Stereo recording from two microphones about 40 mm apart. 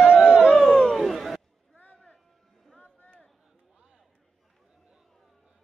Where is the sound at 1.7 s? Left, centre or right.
Left.